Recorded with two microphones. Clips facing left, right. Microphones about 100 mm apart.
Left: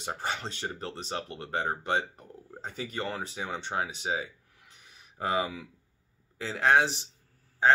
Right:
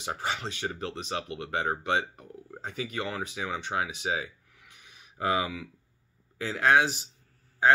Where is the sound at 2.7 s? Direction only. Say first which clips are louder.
Right 1 dB; 35° left (ahead or behind).